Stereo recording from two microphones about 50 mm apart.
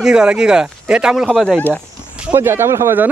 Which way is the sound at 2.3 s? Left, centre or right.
Right.